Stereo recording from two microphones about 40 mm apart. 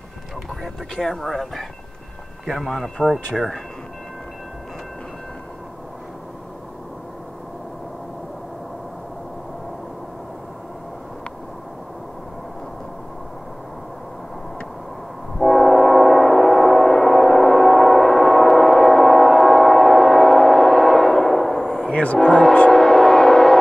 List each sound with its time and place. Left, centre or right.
0.9 s speech: centre
15.3 s train: centre
21.8 s a sound: left
22.7 s train: centre